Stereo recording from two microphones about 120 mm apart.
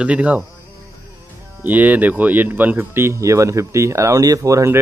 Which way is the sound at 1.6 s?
15° right (ahead or behind).